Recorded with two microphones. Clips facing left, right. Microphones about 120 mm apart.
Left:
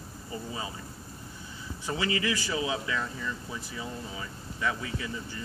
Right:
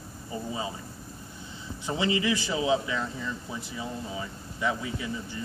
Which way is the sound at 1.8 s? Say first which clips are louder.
Right 3 dB; 25° right (ahead or behind).